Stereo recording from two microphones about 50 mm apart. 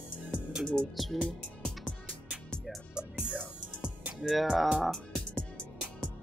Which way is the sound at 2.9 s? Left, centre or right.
Right.